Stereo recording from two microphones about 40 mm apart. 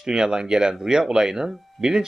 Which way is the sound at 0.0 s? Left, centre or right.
Centre.